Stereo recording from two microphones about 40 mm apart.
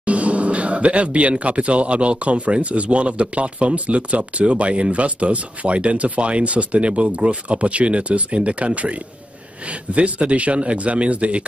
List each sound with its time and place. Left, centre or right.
0.0 s speech: right
9.9 s speech: right